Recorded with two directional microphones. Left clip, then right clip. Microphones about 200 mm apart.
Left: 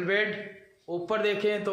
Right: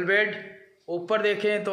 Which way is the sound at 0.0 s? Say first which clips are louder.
Right 4 dB; 5° left (ahead or behind).